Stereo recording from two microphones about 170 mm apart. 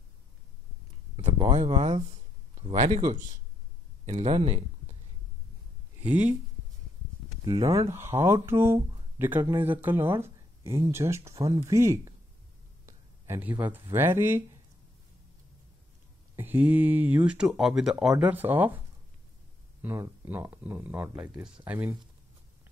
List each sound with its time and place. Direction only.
1.4 s speech: 35° right (ahead or behind)
4.0 s speech: 40° right (ahead or behind)
5.9 s speech: 10° right (ahead or behind)
7.4 s speech: 20° right (ahead or behind)
12.8 s a sound: 15° right (ahead or behind)
13.9 s speech: 15° right (ahead or behind)
16.3 s speech: 10° right (ahead or behind)
19.8 s speech: 10° right (ahead or behind)